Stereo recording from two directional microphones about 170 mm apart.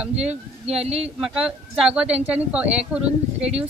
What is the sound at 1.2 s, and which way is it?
Speech, 5° right (ahead or behind).